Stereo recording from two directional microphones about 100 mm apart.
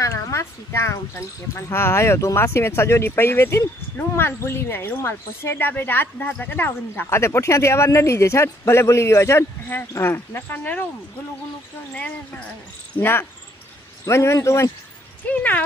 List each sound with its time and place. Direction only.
0.0 s speech: 30° left (ahead or behind)
12.9 s speech: 20° left (ahead or behind)
15.2 s speech: 15° left (ahead or behind)